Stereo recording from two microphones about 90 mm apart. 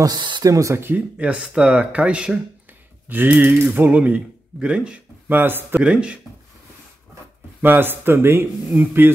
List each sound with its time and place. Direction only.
0.0 s speech: 55° right (ahead or behind)
0.5 s speech: 35° right (ahead or behind)
5.8 s speech: 10° right (ahead or behind)
7.6 s speech: 25° right (ahead or behind)